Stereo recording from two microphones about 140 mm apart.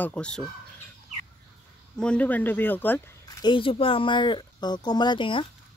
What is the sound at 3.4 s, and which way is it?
Speech, 35° left (ahead or behind).